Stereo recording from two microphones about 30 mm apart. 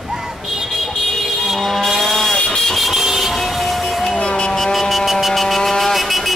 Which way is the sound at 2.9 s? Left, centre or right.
Centre.